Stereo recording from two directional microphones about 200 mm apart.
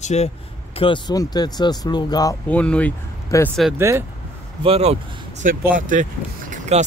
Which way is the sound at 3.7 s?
15° right (ahead or behind).